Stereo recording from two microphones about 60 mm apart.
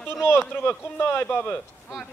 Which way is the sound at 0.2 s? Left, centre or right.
Left.